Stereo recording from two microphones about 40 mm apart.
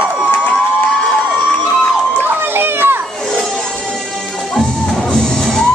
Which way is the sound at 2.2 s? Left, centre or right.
Right.